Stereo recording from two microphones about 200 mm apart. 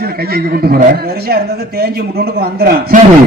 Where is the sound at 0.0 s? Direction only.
50° right (ahead or behind).